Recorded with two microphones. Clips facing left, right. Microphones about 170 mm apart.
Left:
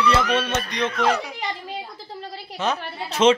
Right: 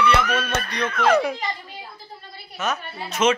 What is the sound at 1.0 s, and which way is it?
Speech, 50° right (ahead or behind).